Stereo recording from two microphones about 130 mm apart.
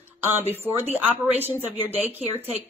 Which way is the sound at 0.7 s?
15° right (ahead or behind).